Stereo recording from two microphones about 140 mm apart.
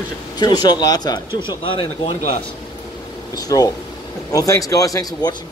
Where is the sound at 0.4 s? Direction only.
30° left (ahead or behind).